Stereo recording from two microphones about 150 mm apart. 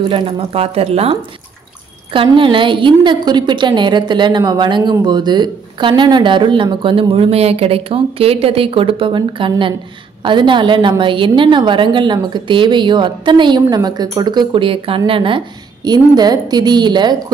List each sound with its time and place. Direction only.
0.1 s speech: 35° right (ahead or behind)
2.1 s a woman's voice: 35° right (ahead or behind)